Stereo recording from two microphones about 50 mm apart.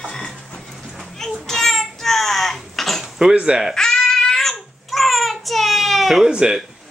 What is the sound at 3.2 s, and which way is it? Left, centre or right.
Speech, centre.